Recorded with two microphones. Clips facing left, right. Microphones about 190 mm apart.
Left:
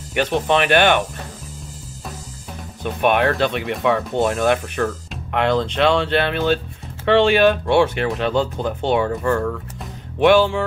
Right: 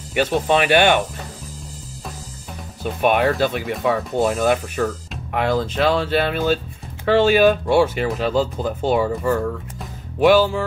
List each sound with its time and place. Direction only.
0.3 s speech: 10° right (ahead or behind)
2.8 s speech: 5° right (ahead or behind)